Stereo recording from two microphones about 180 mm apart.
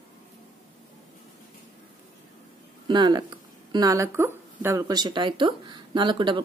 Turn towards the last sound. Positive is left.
turn(degrees=-25)  # may be behind; listen again after turning